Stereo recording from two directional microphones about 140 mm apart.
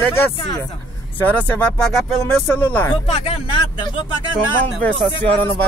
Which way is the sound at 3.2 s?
40° left (ahead or behind).